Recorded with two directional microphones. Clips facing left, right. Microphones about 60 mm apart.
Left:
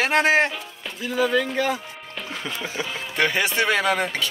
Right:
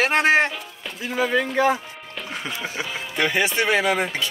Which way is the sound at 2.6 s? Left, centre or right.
Centre.